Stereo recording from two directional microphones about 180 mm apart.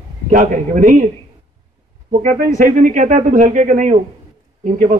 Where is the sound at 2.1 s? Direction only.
50° right (ahead or behind).